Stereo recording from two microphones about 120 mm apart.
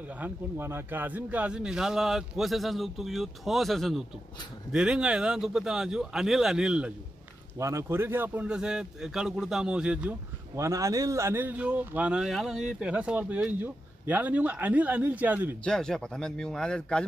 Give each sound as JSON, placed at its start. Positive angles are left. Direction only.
{"t": 0.1, "sound": "a man's voice", "side_deg": -15}
{"t": 7.5, "sound": "speech", "side_deg": -25}
{"t": 10.5, "sound": "speech", "side_deg": -25}
{"t": 15.6, "sound": "a man's voice", "side_deg": 5}